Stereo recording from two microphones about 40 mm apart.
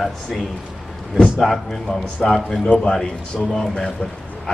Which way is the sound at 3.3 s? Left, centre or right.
Centre.